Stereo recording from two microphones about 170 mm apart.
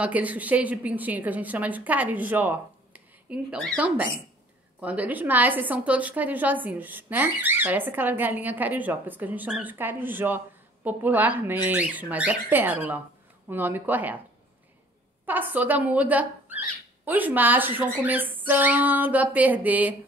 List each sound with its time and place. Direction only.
0.0 s a woman's voice: 10° right (ahead or behind)
3.5 s speech: 5° left (ahead or behind)
4.7 s a woman's voice: 10° right (ahead or behind)
15.2 s a woman's voice: 10° right (ahead or behind)